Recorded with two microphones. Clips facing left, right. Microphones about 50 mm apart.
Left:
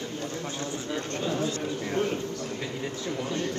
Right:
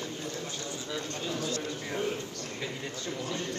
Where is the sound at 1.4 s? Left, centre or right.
Left.